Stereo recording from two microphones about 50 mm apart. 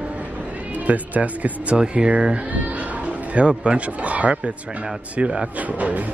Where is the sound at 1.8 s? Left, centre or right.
Centre.